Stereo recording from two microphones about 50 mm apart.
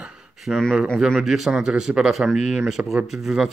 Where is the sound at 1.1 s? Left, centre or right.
Centre.